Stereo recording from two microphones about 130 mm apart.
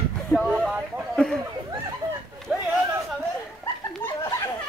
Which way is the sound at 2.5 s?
5° right (ahead or behind).